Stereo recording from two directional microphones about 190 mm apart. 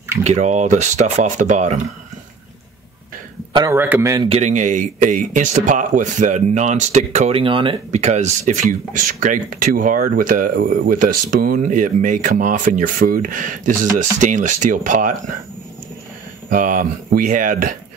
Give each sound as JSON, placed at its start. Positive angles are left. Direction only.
{"t": 0.2, "sound": "speech", "side_deg": -35}
{"t": 3.7, "sound": "a man's voice", "side_deg": -10}
{"t": 4.3, "sound": "speech", "side_deg": -35}
{"t": 16.4, "sound": "speech", "side_deg": -45}